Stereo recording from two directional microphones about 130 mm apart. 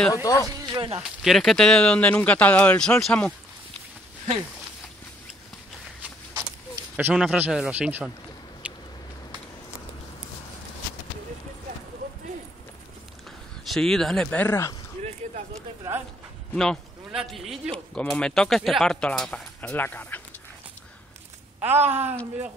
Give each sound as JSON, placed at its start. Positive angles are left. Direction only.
{"t": 0.1, "sound": "speech", "side_deg": 25}
{"t": 0.5, "sound": "speech", "side_deg": -35}
{"t": 0.9, "sound": "speech", "side_deg": -5}
{"t": 7.0, "sound": "speech", "side_deg": -10}
{"t": 8.6, "sound": "a sound", "side_deg": -10}
{"t": 13.7, "sound": "speech", "side_deg": 5}
{"t": 15.5, "sound": "speech", "side_deg": -25}
{"t": 16.5, "sound": "speech", "side_deg": 0}
{"t": 21.5, "sound": "speech", "side_deg": -15}